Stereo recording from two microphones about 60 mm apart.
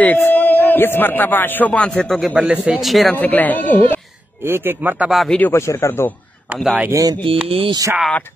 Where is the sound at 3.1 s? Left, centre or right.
Left.